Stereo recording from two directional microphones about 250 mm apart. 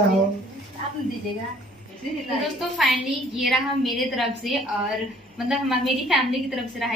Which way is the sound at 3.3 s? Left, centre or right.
Centre.